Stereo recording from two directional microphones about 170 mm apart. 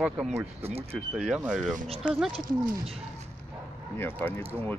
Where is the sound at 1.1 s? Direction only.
5° right (ahead or behind).